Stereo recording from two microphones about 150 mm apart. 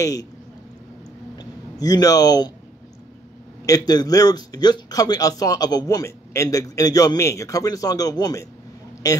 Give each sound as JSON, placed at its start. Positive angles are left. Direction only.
{"t": 0.0, "sound": "a man's voice", "side_deg": 25}
{"t": 1.4, "sound": "a man's voice", "side_deg": 25}
{"t": 3.6, "sound": "a man's voice", "side_deg": 25}